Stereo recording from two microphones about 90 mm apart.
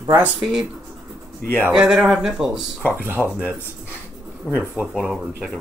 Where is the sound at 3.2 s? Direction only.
20° left (ahead or behind).